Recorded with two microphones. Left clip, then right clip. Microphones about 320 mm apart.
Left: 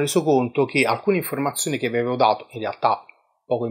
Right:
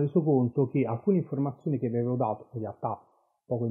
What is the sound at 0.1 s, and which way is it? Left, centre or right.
Speech, left.